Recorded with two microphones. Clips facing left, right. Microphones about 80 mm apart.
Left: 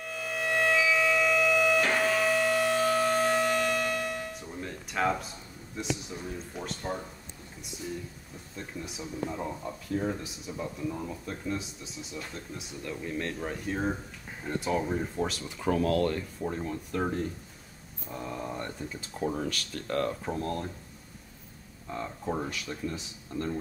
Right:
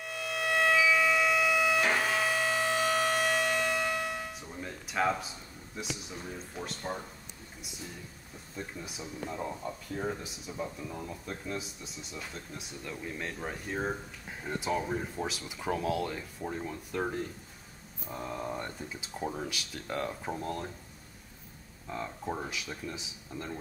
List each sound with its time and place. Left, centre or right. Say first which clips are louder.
0.0 s music: left 1 dB; centre
2.2 s civil defense siren: left 4 dB; centre
4.3 s music: left 3 dB; centre
5.8 s speech: left 5 dB; centre
8.5 s speech: left 1 dB; centre
21.8 s speech: left 2 dB; centre